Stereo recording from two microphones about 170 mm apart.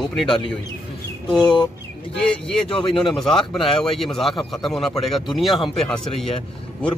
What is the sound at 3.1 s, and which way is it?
Speech, 5° left (ahead or behind).